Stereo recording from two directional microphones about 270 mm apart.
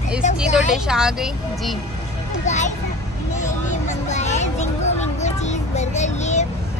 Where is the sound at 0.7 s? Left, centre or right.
Centre.